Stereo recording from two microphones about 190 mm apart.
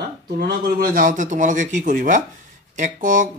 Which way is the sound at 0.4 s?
55° right (ahead or behind).